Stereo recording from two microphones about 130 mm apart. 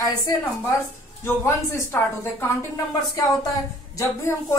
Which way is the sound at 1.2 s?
20° left (ahead or behind).